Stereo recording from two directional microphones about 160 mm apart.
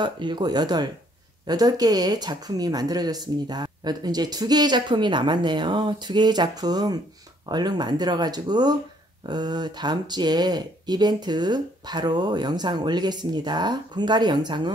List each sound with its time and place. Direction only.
0.0 s speech: 30° right (ahead or behind)